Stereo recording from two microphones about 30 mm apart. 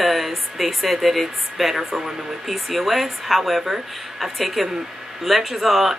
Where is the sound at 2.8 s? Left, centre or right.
Centre.